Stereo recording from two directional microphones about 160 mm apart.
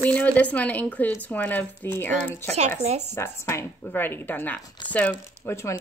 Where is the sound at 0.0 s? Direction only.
10° left (ahead or behind).